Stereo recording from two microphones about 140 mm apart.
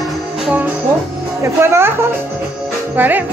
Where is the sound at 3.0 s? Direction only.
10° right (ahead or behind).